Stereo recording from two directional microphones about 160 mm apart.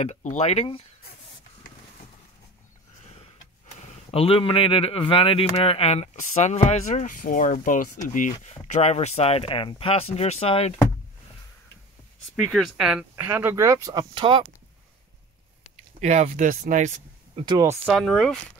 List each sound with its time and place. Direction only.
0.0 s speech: 50° left (ahead or behind)
4.1 s speech: 35° left (ahead or behind)
12.4 s speech: centre (ahead or behind)
13.1 s speech: 15° right (ahead or behind); by 14.4 s 30° right (ahead or behind)
16.0 s speech: 50° right (ahead or behind)
17.5 s speech: 25° right (ahead or behind)
17.8 s speech: centre (ahead or behind)